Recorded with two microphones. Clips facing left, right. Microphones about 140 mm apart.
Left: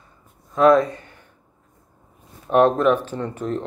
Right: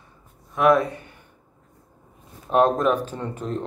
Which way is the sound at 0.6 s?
10° right (ahead or behind).